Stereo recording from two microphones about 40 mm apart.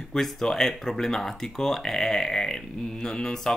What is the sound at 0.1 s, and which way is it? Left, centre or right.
Speech, centre.